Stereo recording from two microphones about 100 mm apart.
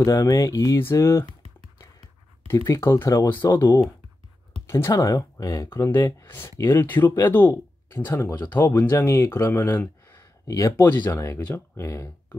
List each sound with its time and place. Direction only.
0.0 s speech: 35° left (ahead or behind)
2.4 s speech: 30° left (ahead or behind)
3.4 s speech: 45° left (ahead or behind)
4.6 s speech: 25° left (ahead or behind)